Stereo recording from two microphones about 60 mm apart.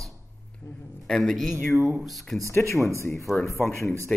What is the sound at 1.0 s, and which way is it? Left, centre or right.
A man's voice, centre.